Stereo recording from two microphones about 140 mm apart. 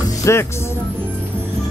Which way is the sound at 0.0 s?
20° left (ahead or behind).